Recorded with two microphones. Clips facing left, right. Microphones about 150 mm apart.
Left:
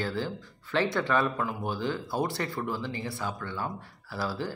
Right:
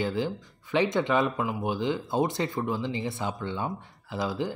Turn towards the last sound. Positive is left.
turn(degrees=-20)  # may be behind; listen again after turning